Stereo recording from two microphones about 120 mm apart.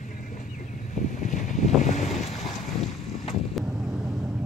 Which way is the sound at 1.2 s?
90° left.